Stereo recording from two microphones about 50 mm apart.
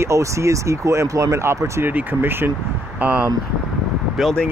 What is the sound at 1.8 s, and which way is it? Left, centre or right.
Speech, right.